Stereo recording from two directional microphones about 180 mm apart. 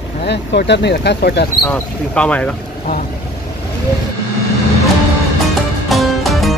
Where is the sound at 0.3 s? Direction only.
70° left (ahead or behind).